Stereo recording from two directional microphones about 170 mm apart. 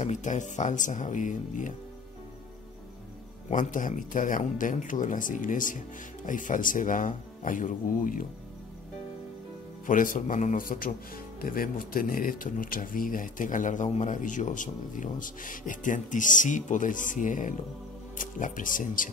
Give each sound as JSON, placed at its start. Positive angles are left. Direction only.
{"t": 0.0, "sound": "speech", "side_deg": 45}
{"t": 3.4, "sound": "speech", "side_deg": 50}
{"t": 9.8, "sound": "speech", "side_deg": 50}